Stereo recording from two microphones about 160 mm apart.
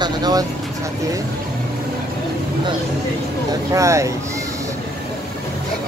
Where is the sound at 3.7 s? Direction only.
20° right (ahead or behind).